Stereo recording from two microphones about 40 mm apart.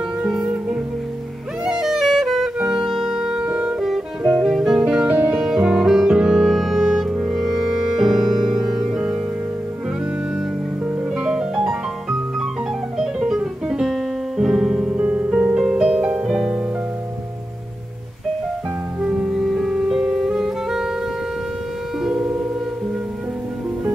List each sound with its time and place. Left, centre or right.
0.2 s music: centre
1.7 s music: centre
3.4 s music: right
4.4 s music: centre
5.0 s music: right
5.6 s music: right
11.1 s music: centre
14.9 s music: right
15.3 s music: right
18.9 s music: right
19.3 s music: centre